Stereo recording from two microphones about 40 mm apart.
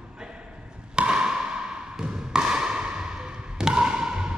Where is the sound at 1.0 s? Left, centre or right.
Right.